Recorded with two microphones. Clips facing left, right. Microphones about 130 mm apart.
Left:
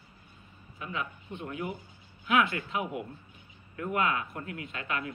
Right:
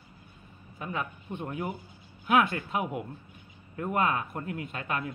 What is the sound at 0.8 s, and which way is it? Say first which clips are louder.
Speech: right 2 dB; 45° right (ahead or behind).